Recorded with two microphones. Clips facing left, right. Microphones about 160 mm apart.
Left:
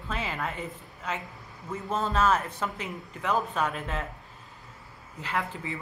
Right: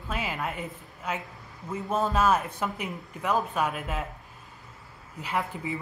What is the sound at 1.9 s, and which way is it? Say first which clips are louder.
Speech: right 1 dB; 10° right (ahead or behind).